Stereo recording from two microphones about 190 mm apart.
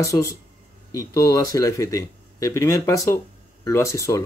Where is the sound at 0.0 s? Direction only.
15° left (ahead or behind).